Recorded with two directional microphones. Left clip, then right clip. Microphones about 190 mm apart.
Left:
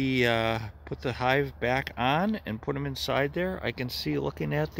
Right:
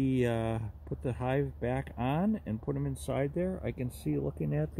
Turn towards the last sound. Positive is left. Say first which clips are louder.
# left 5 dB
turn(degrees=15)  # may be behind; listen again after turning